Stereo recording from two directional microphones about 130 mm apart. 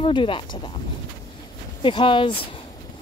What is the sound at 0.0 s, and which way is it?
Speech, 40° left (ahead or behind).